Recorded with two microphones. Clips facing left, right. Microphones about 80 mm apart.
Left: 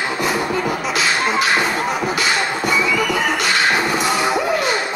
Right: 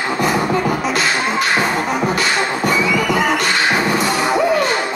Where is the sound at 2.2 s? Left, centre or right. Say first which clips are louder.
Right 2 dB; centre.